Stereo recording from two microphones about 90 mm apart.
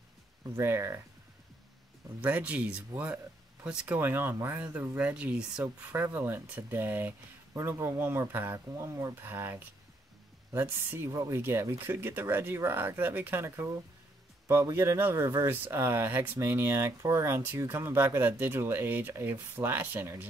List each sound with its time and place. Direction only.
0.6 s speech: 30° right (ahead or behind)
2.2 s speech: 20° right (ahead or behind)
4.9 s speech: 15° right (ahead or behind)
14.8 s speech: 25° right (ahead or behind)